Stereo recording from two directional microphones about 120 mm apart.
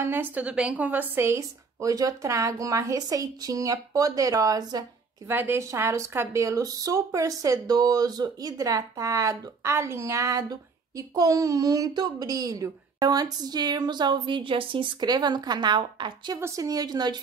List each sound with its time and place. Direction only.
0.0 s a woman's voice: 15° right (ahead or behind); by 4.8 s 30° right (ahead or behind)
5.3 s speech: 20° right (ahead or behind); by 16.3 s 40° right (ahead or behind)
16.3 s speech: 25° right (ahead or behind)